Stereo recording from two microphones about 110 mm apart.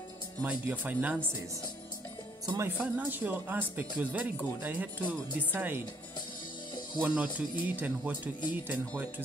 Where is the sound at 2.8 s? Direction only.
15° right (ahead or behind).